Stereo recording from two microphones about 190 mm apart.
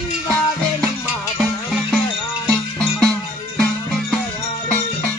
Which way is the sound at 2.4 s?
5° left (ahead or behind).